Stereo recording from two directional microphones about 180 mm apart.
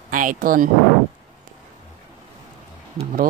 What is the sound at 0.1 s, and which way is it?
Speech, 50° right (ahead or behind).